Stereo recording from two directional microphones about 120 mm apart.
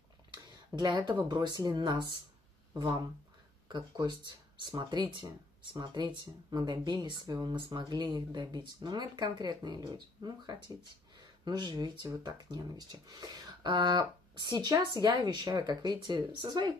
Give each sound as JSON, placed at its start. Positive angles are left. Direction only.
{"t": 0.7, "sound": "speech", "side_deg": -40}